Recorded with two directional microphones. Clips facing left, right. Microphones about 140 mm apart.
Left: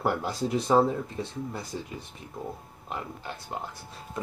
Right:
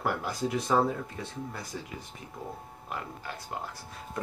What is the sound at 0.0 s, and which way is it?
Speech, 30° left (ahead or behind).